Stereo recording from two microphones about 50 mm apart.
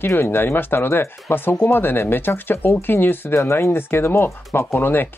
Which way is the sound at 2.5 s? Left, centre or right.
Left.